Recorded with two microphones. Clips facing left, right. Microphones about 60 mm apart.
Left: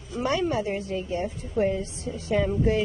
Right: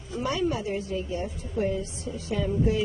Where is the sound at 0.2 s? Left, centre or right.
Left.